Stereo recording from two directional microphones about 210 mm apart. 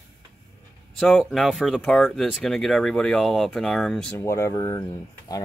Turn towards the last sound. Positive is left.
turn(degrees=20)  # may be behind; listen again after turning